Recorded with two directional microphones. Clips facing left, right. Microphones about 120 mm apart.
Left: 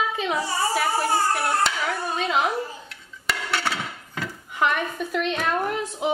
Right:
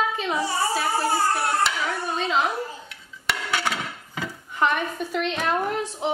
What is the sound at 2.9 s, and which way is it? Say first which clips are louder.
Music: even; centre (ahead or behind).